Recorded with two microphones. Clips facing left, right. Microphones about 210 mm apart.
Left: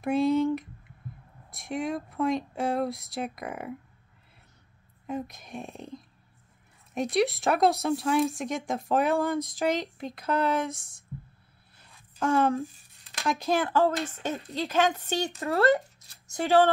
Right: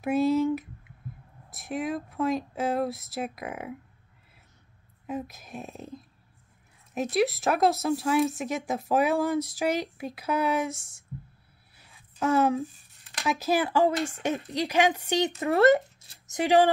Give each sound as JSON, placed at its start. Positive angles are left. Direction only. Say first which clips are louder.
{"t": 0.0, "sound": "speech", "louder": "even", "side_deg": -5}
{"t": 5.0, "sound": "speech", "louder": "even", "side_deg": -5}
{"t": 11.1, "sound": "a sound", "louder": "even", "side_deg": -10}
{"t": 13.2, "sound": "speech", "louder": "right 1 dB", "side_deg": -5}